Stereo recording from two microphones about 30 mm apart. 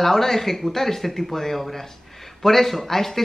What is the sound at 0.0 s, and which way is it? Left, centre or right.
Speech, centre.